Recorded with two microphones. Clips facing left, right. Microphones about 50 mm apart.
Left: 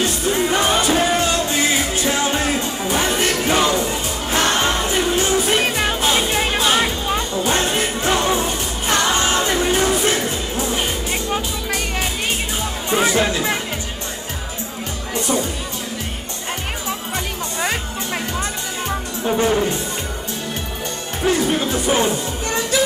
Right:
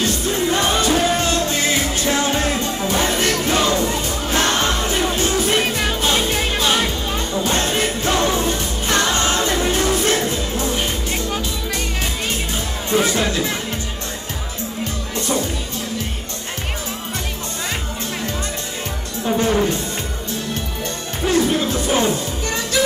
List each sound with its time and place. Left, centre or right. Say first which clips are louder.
0.0 s music: left 1 dB; left
12.9 s music: left 1 dB; centre
15.1 s music: left 1 dB; left
19.2 s music: even; centre
21.2 s music: right 1 dB; centre